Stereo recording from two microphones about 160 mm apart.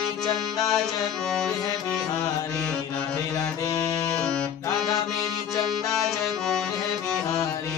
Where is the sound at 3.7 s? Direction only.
25° left (ahead or behind).